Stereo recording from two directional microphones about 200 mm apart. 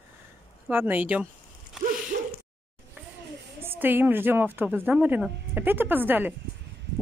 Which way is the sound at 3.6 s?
10° right (ahead or behind).